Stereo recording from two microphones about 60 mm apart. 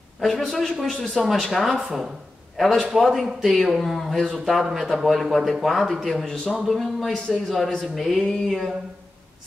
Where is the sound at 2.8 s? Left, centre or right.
Centre.